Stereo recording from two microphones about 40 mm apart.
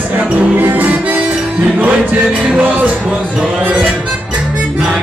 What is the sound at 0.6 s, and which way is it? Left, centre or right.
Music, right.